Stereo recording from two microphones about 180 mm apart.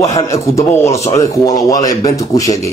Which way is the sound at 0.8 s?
35° left (ahead or behind).